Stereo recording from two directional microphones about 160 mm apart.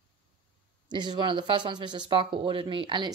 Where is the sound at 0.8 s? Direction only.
25° right (ahead or behind).